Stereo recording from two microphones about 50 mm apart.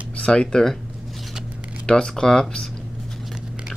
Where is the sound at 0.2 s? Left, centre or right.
Centre.